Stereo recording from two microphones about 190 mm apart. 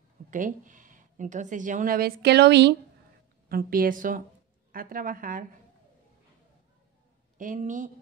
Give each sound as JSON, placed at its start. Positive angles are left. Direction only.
{"t": 0.3, "sound": "speech", "side_deg": -45}
{"t": 3.4, "sound": "speech", "side_deg": -50}
{"t": 7.3, "sound": "speech", "side_deg": -45}